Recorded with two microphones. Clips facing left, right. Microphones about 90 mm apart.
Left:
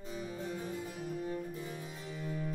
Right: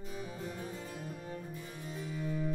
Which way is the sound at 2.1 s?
Centre (ahead or behind).